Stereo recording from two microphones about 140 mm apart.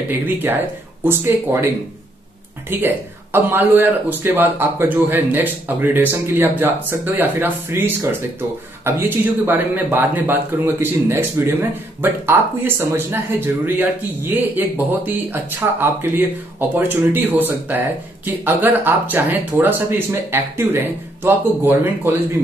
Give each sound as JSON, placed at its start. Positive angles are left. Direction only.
{"t": 0.1, "sound": "speech", "side_deg": -15}
{"t": 2.7, "sound": "speech", "side_deg": -15}